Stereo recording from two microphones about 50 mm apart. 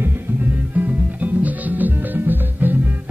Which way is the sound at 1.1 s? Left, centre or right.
Right.